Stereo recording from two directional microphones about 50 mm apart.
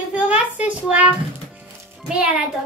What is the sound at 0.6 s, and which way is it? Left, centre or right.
A child's voice, right.